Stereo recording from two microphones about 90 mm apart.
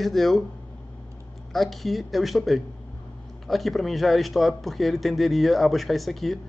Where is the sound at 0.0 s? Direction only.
Centre (ahead or behind).